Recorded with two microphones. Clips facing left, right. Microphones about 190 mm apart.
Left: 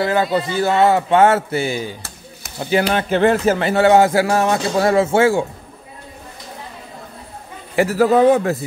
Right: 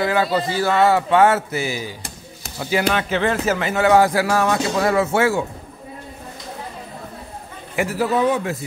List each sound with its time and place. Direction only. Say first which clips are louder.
0.0 s speech: left 2 dB; 25° left (ahead or behind)
3.1 s a man's voice: left 6 dB; 45° left (ahead or behind)
3.4 s speech: left 4 dB; 35° left (ahead or behind)
7.7 s a man's voice: left 6 dB; 40° left (ahead or behind)
8.1 s a man's voice: left 7 dB; 50° left (ahead or behind)